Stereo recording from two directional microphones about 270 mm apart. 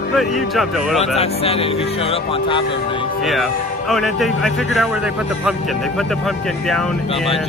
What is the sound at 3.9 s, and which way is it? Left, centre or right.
A man's voice, centre.